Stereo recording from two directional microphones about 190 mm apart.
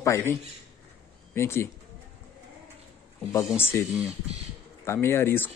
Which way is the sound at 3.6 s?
10° left (ahead or behind).